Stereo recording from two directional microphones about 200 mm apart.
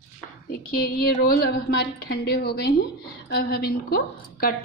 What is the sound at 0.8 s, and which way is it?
A woman's voice, 50° left (ahead or behind).